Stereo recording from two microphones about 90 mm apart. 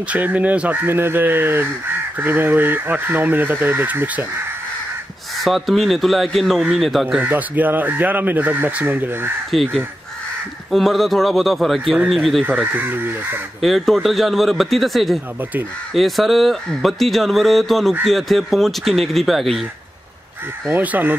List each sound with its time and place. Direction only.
0.1 s speech: 15° right (ahead or behind)
5.4 s speech: centre (ahead or behind)
7.2 s speech: 20° right (ahead or behind)
9.5 s speech: 5° left (ahead or behind)
10.7 s speech: centre (ahead or behind)
12.7 s speech: 20° right (ahead or behind)
13.6 s speech: centre (ahead or behind)
20.6 s speech: 20° right (ahead or behind)